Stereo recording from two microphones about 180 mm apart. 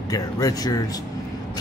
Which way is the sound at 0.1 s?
20° left (ahead or behind).